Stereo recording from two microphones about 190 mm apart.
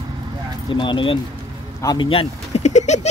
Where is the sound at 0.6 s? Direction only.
25° left (ahead or behind).